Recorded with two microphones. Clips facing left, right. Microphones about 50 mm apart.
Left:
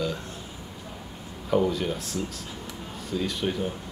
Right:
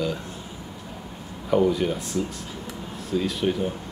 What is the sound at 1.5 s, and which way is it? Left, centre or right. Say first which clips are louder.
Speech: right 3 dB; centre.